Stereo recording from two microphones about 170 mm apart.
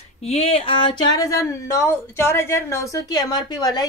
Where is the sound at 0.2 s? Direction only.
40° left (ahead or behind).